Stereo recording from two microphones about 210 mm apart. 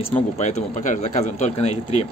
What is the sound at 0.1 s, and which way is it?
A man's voice, 35° left (ahead or behind).